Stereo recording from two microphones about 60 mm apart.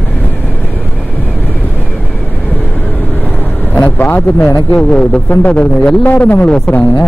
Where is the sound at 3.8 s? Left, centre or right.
Left.